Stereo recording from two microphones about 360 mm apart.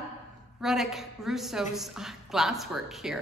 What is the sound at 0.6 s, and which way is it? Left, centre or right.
A woman's voice, centre.